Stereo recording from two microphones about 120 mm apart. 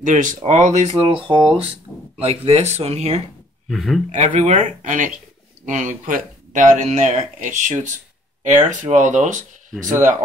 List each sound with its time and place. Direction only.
0.0 s speech: 90° right; by 1.6 s 40° right (ahead or behind)
2.2 s speech: 55° right (ahead or behind)
3.6 s speech: centre (ahead or behind)
4.1 s speech: 85° right